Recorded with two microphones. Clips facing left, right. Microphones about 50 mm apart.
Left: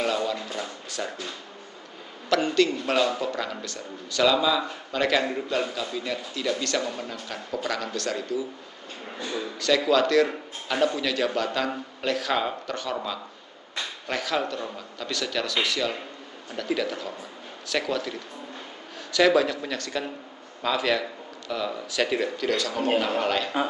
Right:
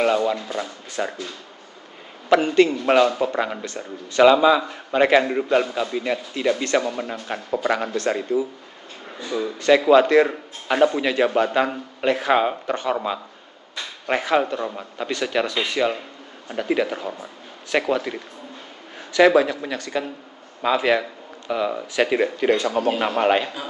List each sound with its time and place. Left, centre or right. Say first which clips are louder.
0.0 s speech: right 6 dB; right
2.2 s a man's voice: right 6 dB; right